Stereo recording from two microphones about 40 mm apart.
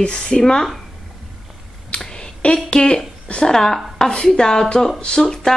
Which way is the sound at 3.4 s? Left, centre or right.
Centre.